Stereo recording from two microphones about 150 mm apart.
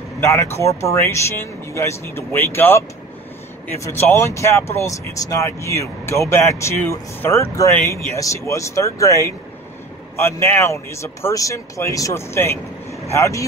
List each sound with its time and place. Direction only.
0.2 s speech: 20° left (ahead or behind)